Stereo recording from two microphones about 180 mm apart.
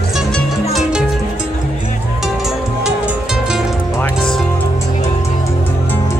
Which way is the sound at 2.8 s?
5° right (ahead or behind).